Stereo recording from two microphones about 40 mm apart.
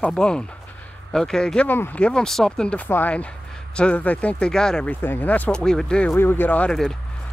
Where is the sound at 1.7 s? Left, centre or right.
Left.